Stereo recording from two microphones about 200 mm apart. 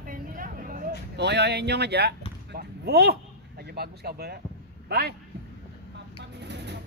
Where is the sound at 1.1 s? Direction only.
55° right (ahead or behind).